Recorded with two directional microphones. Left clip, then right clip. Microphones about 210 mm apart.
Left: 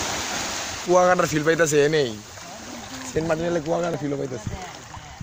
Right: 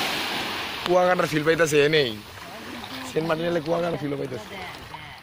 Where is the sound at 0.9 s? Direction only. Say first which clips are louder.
Left 3 dB; 50° left (ahead or behind).